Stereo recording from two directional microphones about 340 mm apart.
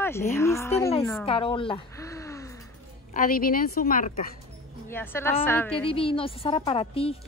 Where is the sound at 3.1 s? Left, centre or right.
Left.